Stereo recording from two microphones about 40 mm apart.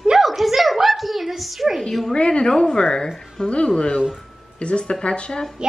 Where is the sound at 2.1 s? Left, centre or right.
Left.